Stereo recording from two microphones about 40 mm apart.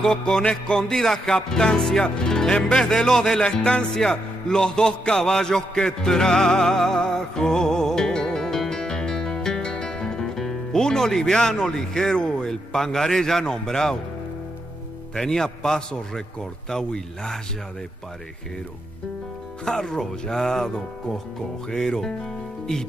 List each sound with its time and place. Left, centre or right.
0.0 s music: left
0.4 s a man's voice: left
3.4 s music: left
4.1 s a sound: left
11.6 s a man's voice: centre
15.1 s a man's voice: centre
19.7 s a man's voice: centre